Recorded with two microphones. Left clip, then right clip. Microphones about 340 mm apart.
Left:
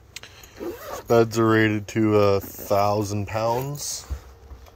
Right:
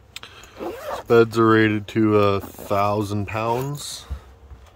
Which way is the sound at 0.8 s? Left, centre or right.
Centre.